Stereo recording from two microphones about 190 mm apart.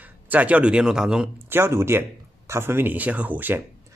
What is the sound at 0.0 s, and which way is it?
Speech, 10° right (ahead or behind).